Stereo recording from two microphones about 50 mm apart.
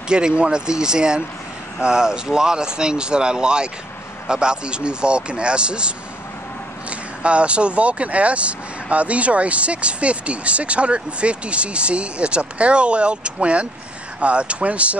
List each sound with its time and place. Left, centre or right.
0.1 s speech: centre